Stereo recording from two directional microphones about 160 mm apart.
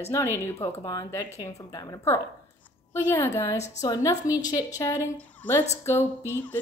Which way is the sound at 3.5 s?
45° left (ahead or behind).